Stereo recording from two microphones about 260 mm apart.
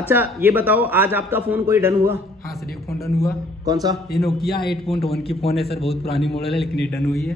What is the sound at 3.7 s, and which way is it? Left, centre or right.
Speech, centre.